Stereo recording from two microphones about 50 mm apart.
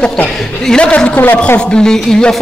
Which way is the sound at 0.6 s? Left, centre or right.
Centre.